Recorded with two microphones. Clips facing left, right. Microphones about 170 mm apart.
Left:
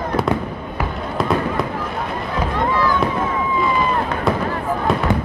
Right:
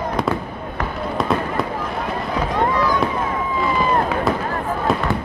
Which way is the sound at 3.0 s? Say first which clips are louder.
Left 1 dB; centre (ahead or behind).